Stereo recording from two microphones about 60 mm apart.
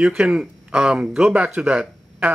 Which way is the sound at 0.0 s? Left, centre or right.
Centre.